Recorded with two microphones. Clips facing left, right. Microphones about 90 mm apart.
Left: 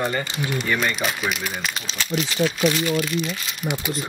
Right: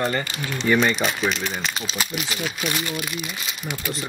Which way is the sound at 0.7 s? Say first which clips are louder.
Right 6 dB; centre (ahead or behind).